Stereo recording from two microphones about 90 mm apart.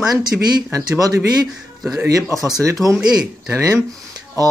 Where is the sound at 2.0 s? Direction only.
35° right (ahead or behind).